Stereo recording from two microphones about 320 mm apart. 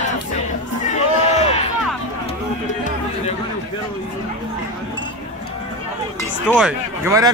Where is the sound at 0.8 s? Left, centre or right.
Left.